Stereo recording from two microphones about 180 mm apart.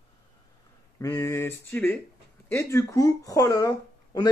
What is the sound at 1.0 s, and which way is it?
Speech, 15° left (ahead or behind).